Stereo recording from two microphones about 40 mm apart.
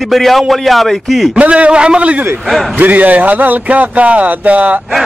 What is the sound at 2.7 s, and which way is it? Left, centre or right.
A man's voice, right.